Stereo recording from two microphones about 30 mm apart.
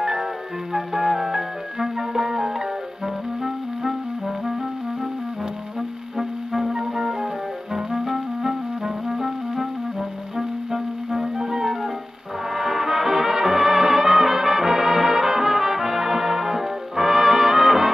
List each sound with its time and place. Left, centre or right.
0.0 s music: centre
5.8 s music: centre